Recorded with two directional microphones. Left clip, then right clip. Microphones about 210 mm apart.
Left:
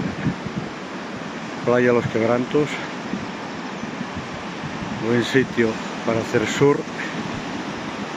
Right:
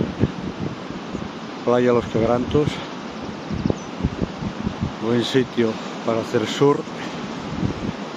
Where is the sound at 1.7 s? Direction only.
5° right (ahead or behind).